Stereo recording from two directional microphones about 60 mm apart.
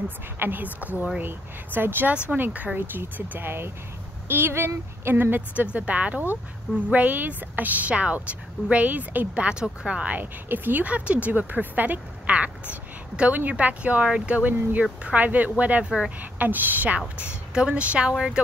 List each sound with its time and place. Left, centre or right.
0.4 s a woman's voice: right; by 18.4 s centre